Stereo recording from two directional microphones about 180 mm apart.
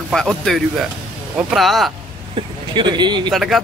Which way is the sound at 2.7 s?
25° right (ahead or behind).